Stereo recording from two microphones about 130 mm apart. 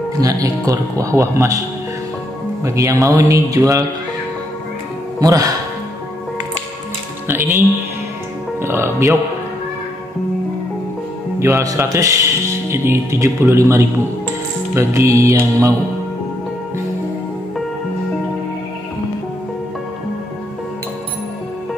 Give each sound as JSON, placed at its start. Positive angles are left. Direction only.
{"t": 0.2, "sound": "speech", "side_deg": -25}
{"t": 2.6, "sound": "speech", "side_deg": -25}
{"t": 5.2, "sound": "speech", "side_deg": -25}
{"t": 7.2, "sound": "speech", "side_deg": -15}
{"t": 8.6, "sound": "speech", "side_deg": -20}
{"t": 11.3, "sound": "speech", "side_deg": -20}